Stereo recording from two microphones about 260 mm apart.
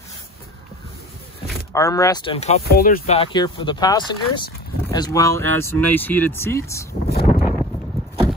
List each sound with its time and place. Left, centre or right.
1.7 s speech: centre
2.7 s speech: left
3.2 s speech: centre
7.1 s a sound: left